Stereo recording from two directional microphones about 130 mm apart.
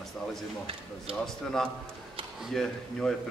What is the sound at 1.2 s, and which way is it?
Speech, 5° left (ahead or behind).